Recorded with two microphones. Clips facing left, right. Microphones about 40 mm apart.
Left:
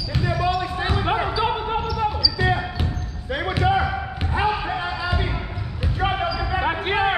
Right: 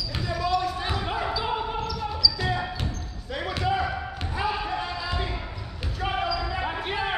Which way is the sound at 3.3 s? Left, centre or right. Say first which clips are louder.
Left 6 dB; left.